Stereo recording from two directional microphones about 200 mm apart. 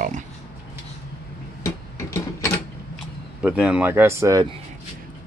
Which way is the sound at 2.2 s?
10° left (ahead or behind).